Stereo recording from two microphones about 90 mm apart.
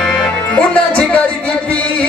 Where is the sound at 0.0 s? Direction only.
10° left (ahead or behind).